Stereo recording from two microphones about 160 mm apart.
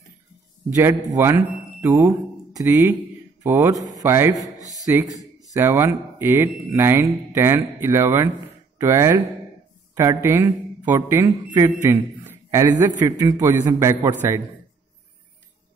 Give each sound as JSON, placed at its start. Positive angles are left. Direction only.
{"t": 0.7, "sound": "a man's voice", "side_deg": -15}